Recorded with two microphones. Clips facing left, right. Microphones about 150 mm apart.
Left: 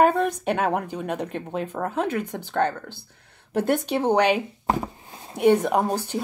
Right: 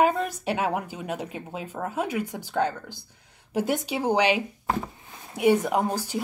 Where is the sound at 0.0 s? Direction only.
5° right (ahead or behind).